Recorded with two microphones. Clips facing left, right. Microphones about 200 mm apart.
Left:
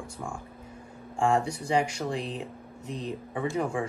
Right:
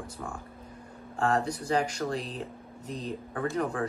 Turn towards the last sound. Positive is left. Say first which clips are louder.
# left 1 dB
turn(degrees=10)  # may be behind; listen again after turning